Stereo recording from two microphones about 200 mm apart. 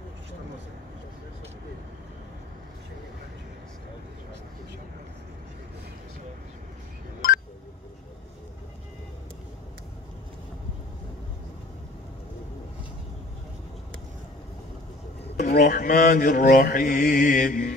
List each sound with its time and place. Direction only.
15.3 s mantra: 45° left (ahead or behind)